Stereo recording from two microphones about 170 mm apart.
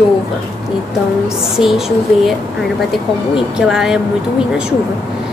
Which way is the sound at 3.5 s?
5° right (ahead or behind).